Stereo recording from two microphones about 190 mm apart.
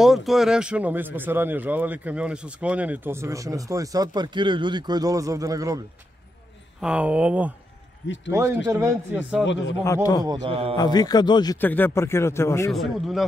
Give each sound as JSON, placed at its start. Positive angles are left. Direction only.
{"t": 0.0, "sound": "speech", "side_deg": 0}
{"t": 6.8, "sound": "speech", "side_deg": -5}
{"t": 10.2, "sound": "a man's voice", "side_deg": -25}
{"t": 10.8, "sound": "a man's voice", "side_deg": 20}
{"t": 11.5, "sound": "speech", "side_deg": 10}
{"t": 12.7, "sound": "speech", "side_deg": 0}